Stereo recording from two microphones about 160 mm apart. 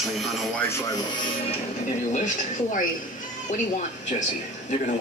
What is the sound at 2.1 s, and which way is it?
Speech, 50° left (ahead or behind).